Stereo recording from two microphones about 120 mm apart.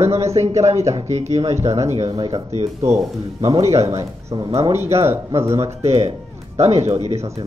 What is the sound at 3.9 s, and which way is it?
Speech, 30° right (ahead or behind).